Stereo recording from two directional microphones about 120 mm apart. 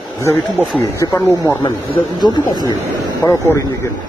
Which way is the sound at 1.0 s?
25° left (ahead or behind).